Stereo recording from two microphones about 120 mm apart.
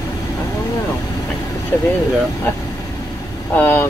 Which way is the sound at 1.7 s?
20° left (ahead or behind).